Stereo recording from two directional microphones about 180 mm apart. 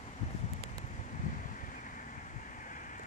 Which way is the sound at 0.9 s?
45° left (ahead or behind).